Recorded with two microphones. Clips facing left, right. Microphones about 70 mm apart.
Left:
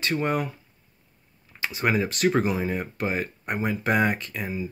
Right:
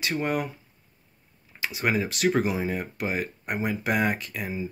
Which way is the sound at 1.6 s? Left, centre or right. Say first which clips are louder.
Left 2 dB; centre.